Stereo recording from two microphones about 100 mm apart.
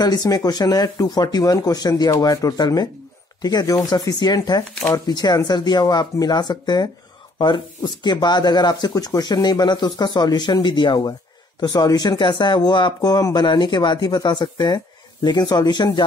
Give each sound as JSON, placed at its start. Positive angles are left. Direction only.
{"t": 0.0, "sound": "speech", "side_deg": 40}